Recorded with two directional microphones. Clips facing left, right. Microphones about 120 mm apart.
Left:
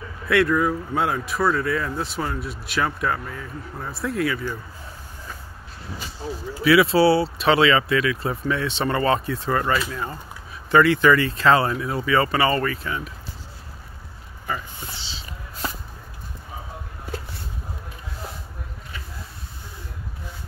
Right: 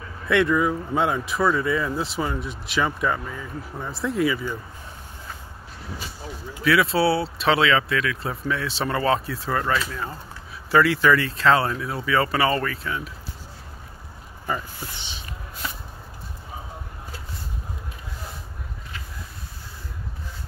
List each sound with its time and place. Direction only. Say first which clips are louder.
0.3 s speech: left 1 dB; centre (ahead or behind)
6.6 s speech: left 4 dB; 5° left (ahead or behind)
14.5 s speech: right 1 dB; 20° right (ahead or behind)